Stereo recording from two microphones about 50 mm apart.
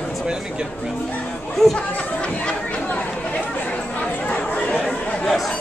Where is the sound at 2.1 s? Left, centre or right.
Centre.